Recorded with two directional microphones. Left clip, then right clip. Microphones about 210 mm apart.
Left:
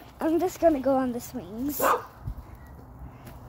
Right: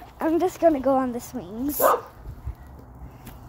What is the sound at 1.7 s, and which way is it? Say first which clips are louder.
Speech: right 4 dB; 25° left (ahead or behind).